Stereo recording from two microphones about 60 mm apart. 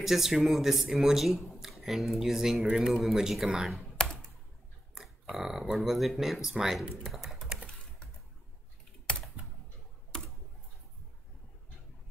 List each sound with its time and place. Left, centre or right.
0.0 s speech: centre
4.0 s computer keyboard: centre
5.3 s speech: centre
9.1 s typing: centre